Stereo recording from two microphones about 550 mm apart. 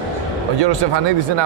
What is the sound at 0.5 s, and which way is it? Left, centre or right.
Speech, right.